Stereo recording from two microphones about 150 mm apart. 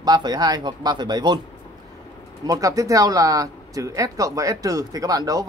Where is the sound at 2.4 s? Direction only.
25° right (ahead or behind).